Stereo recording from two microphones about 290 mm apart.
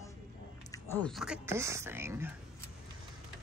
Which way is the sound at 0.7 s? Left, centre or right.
Centre.